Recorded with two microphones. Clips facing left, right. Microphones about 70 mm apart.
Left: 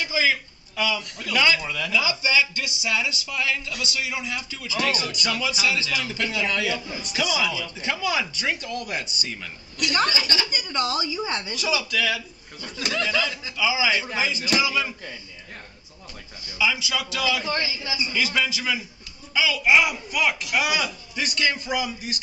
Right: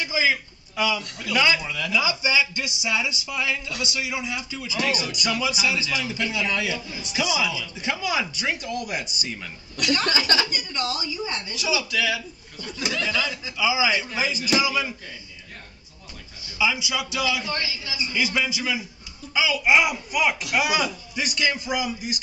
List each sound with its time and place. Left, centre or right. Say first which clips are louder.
0.0 s a sound: even; centre
1.2 s speech: even; centre
10.8 s a woman's voice: left 3 dB; left
11.5 s speech: right 2 dB; centre
16.5 s speech: even; centre
17.5 s a woman's voice: left 2 dB; left
18.1 s speech: right 1 dB; centre